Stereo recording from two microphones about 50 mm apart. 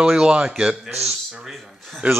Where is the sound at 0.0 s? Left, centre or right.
Centre.